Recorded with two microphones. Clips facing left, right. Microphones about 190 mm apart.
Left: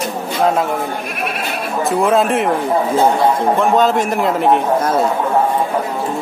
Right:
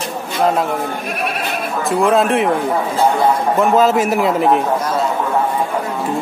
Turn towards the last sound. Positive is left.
turn(degrees=0)  # may be behind; listen again after turning